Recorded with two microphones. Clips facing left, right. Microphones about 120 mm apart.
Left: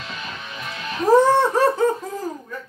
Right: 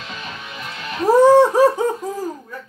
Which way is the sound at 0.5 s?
10° right (ahead or behind).